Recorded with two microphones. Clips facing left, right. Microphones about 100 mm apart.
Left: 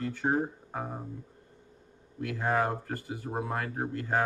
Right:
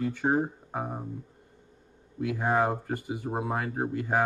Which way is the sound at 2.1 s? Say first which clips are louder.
Right 3 dB; 15° right (ahead or behind).